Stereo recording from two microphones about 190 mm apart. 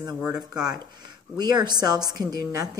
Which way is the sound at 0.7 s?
20° right (ahead or behind).